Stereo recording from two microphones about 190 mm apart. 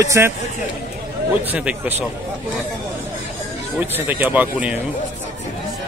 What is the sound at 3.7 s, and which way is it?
A man's voice, 10° right (ahead or behind).